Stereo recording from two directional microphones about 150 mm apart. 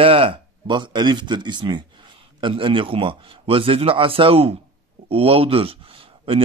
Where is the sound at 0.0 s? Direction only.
40° right (ahead or behind).